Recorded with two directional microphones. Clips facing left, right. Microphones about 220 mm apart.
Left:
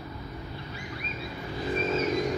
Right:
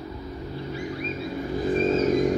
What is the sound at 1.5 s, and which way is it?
Vehicle, 45° right (ahead or behind).